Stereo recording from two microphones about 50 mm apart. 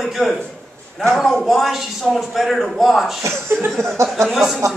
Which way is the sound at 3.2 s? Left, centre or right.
Right.